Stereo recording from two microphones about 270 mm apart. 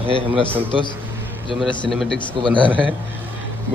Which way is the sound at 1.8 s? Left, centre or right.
Centre.